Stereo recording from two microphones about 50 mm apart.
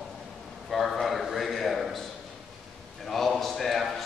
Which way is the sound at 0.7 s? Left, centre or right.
Centre.